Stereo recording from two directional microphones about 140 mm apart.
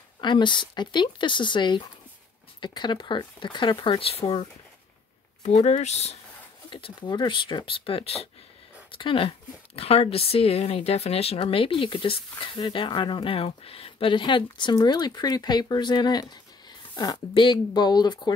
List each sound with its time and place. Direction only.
0.2 s speech: 35° left (ahead or behind); by 6.1 s 50° left (ahead or behind)
6.7 s speech: 35° left (ahead or behind)